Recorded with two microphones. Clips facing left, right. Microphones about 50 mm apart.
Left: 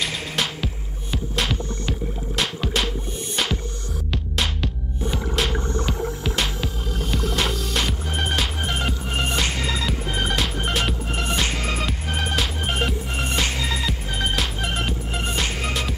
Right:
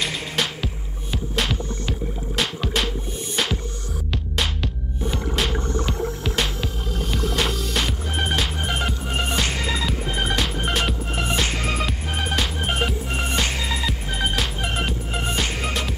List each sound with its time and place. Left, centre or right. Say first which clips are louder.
0.0 s music: even; centre
4.1 s music: even; centre